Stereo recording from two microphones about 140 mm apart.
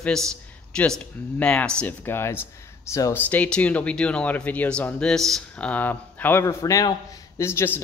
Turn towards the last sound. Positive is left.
turn(degrees=15)  # may be behind; listen again after turning